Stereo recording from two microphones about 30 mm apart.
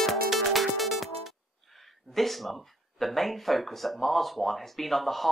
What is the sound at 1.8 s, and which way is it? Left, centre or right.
Speech, centre.